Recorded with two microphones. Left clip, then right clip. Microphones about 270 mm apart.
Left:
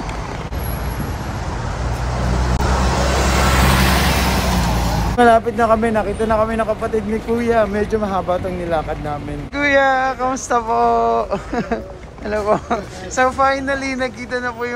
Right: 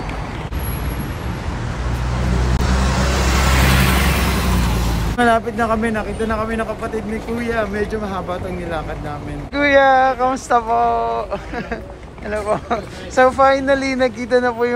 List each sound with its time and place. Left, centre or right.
2.8 s vehicle: left
5.1 s a man's voice: centre
9.6 s speech: centre